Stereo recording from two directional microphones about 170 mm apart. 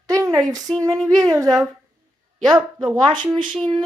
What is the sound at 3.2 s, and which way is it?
Speech, centre (ahead or behind).